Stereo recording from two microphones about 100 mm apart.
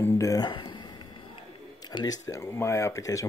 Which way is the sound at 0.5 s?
45° left (ahead or behind).